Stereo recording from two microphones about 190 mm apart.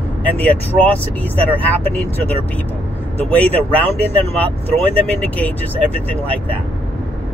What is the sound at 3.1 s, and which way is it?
Speech, 10° left (ahead or behind).